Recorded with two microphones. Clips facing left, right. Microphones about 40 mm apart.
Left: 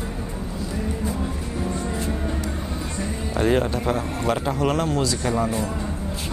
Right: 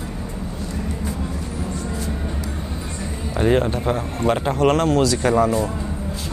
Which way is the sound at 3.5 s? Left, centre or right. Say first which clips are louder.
Right 2 dB; right.